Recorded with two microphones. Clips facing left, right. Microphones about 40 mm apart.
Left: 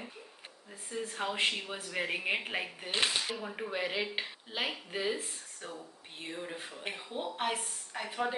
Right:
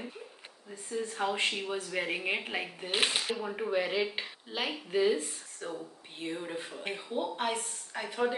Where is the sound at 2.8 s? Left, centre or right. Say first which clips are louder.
Right 2 dB; centre.